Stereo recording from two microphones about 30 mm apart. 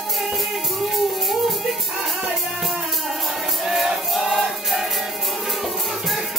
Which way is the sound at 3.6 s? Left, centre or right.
Centre.